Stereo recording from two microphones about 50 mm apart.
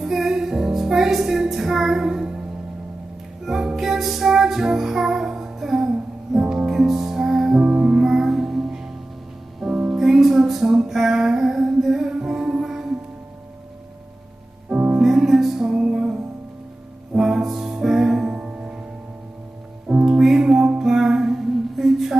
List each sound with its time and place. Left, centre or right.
0.0 s music: centre
3.4 s music: centre
14.7 s music: right
15.0 s music: centre
19.9 s music: centre